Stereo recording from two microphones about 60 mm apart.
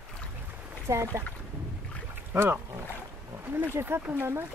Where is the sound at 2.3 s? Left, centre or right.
Right.